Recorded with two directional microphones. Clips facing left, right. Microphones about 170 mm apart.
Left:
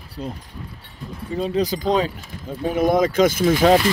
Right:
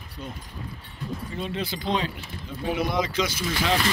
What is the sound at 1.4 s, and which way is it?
Speech, 40° left (ahead or behind).